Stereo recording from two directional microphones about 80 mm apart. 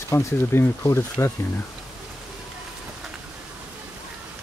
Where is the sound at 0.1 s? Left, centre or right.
Left.